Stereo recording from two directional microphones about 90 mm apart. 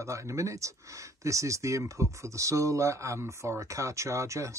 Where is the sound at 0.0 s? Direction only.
35° right (ahead or behind).